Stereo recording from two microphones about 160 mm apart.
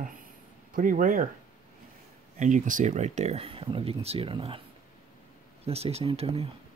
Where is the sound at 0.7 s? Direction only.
60° right (ahead or behind).